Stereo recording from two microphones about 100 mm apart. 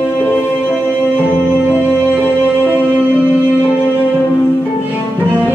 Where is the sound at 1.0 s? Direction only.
20° right (ahead or behind).